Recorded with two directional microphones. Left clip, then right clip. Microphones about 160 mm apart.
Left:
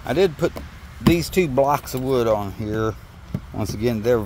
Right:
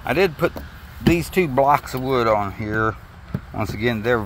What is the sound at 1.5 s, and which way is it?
Speech, 20° left (ahead or behind).